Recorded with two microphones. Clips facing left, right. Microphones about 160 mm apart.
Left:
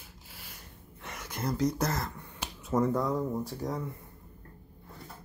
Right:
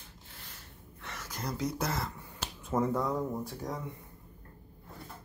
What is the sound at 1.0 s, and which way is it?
Speech, 5° left (ahead or behind).